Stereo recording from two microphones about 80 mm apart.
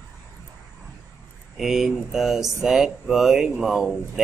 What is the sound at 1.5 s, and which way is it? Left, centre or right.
Speech, centre.